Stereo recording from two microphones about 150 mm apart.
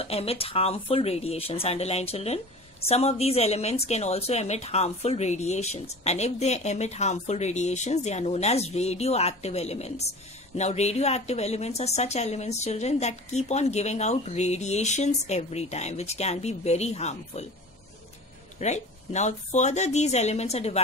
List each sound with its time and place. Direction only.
0.0 s speech: 40° left (ahead or behind)
18.6 s speech: 50° left (ahead or behind)